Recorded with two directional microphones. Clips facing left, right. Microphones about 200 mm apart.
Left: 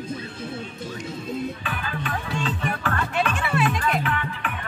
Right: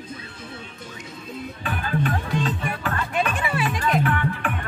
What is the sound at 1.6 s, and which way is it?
Music, 40° right (ahead or behind).